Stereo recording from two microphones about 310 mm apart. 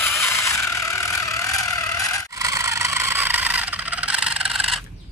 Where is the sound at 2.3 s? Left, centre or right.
Centre.